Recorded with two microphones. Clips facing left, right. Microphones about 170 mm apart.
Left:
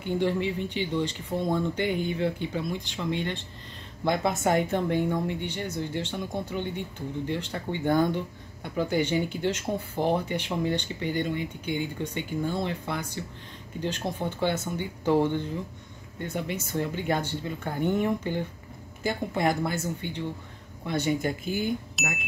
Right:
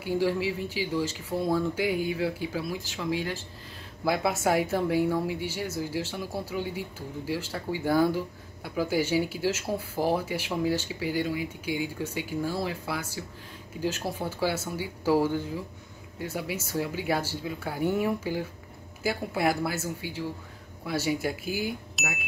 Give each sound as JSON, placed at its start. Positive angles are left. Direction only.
{"t": 0.0, "sound": "speech", "side_deg": -5}